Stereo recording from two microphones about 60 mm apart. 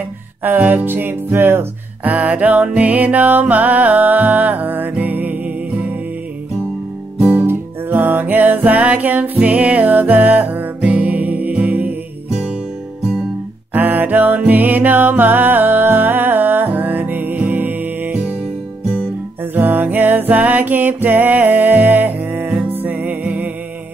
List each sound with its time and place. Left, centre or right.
0.4 s music: right
2.0 s music: right
7.3 s music: right
13.7 s music: right
19.5 s music: right